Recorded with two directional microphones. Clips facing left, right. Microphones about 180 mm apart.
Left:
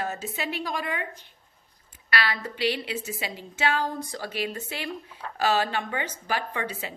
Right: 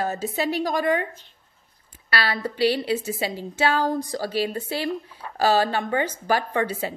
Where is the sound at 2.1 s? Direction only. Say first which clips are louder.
Right 3 dB; 35° right (ahead or behind).